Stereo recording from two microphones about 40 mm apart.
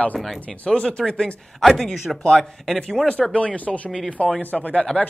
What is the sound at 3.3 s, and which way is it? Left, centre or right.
Speech, left.